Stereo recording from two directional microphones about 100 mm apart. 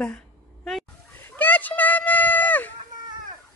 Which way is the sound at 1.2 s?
20° left (ahead or behind).